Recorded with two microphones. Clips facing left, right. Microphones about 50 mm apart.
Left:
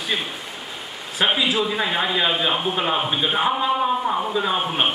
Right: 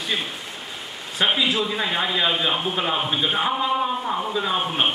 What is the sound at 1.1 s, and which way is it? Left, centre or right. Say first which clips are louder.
Speech: left 1 dB; centre.